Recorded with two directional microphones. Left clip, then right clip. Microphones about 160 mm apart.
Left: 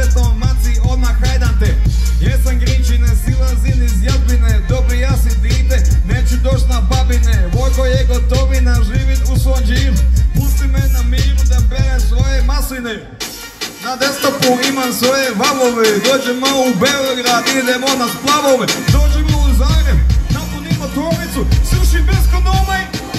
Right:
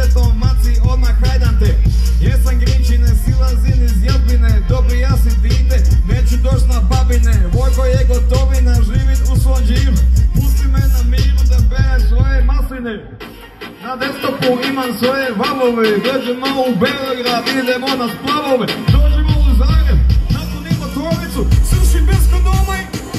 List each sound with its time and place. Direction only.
5.0 s music: 10° right (ahead or behind)
7.1 s music: 5° right (ahead or behind)
14.4 s speech: centre (ahead or behind)
21.5 s music: 15° right (ahead or behind)